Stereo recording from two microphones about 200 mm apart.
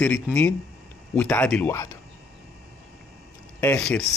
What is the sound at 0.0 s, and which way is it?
A man's voice, 5° left (ahead or behind).